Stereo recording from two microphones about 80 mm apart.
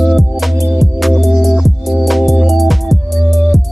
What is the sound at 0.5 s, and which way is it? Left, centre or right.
Music, right.